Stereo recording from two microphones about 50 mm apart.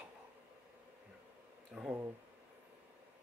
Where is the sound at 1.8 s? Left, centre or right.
Right.